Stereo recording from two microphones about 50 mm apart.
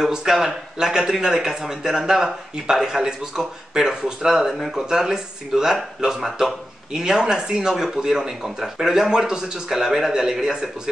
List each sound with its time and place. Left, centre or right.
0.0 s speech: centre